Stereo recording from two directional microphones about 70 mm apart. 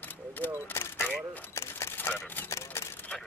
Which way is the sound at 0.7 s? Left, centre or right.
Left.